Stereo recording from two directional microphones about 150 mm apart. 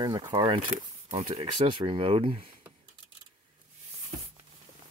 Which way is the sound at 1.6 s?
35° right (ahead or behind).